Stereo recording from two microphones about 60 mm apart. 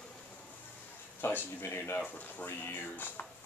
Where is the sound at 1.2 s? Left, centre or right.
Left.